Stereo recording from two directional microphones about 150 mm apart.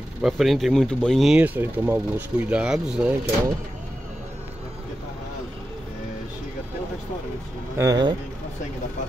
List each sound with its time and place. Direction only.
0.2 s speech: centre (ahead or behind)
7.7 s speech: 20° right (ahead or behind)